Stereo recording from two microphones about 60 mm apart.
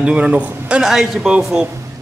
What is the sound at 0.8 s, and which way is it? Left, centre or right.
Speech, centre.